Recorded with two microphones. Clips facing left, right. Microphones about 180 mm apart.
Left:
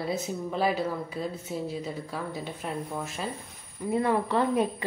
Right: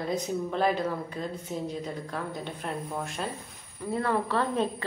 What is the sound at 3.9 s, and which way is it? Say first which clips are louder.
Speech: left 2 dB; 15° left (ahead or behind).